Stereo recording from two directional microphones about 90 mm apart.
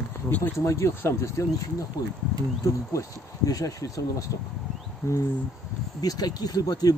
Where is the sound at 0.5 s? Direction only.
35° left (ahead or behind).